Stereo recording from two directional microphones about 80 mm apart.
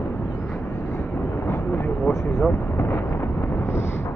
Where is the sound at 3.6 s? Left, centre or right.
Left.